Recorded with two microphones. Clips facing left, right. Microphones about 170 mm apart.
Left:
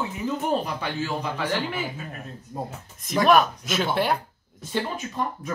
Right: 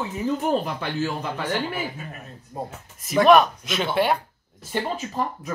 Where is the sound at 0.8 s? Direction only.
50° right (ahead or behind).